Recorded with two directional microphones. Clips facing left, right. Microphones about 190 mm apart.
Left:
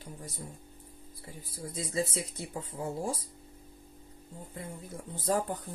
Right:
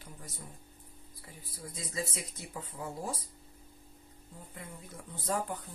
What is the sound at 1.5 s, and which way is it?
Speech, 30° left (ahead or behind).